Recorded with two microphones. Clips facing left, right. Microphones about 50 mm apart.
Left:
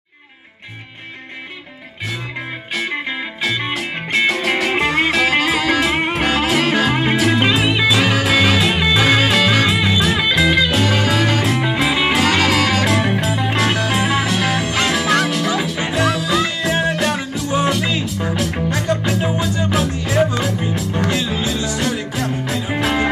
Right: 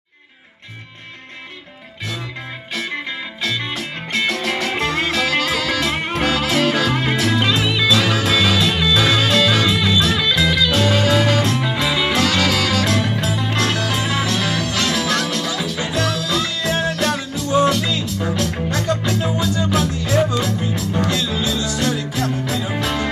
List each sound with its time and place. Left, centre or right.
2.7 s music: centre